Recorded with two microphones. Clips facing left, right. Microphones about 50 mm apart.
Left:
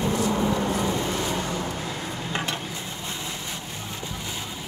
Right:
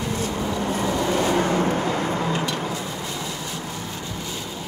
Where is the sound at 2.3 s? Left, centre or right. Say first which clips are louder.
Right 3 dB; left.